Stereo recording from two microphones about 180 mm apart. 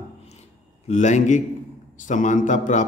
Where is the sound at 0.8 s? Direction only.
40° left (ahead or behind).